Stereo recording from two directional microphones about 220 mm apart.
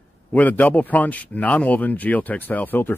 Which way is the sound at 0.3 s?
5° left (ahead or behind).